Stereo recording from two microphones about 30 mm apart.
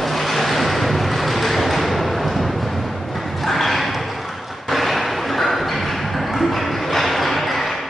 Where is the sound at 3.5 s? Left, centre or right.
Centre.